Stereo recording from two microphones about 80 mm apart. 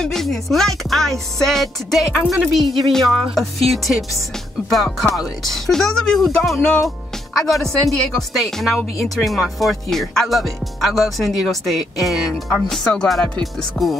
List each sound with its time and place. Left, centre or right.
0.0 s speech: centre
12.4 s music: centre